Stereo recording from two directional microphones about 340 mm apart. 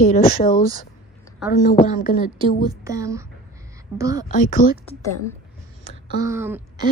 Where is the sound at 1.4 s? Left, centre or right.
Centre.